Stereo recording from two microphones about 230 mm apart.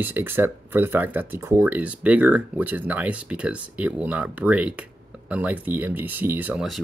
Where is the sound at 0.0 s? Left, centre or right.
Centre.